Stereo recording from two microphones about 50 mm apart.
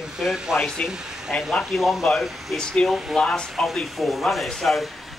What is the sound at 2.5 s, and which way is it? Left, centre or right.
Speech, centre.